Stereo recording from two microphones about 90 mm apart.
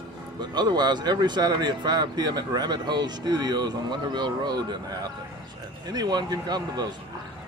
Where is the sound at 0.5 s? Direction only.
50° right (ahead or behind).